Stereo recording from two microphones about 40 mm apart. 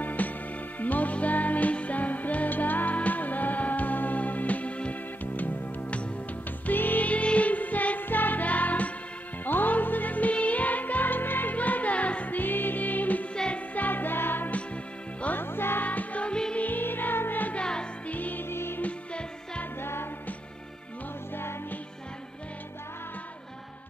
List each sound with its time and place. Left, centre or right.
0.0 s music: left
5.2 s music: left
6.6 s music: left
11.5 s music: left
12.4 s music: left
13.3 s music: left
13.7 s music: left
15.8 s music: left
16.3 s music: centre
16.5 s music: left
17.6 s music: left
18.0 s music: left
18.5 s music: left
19.8 s music: left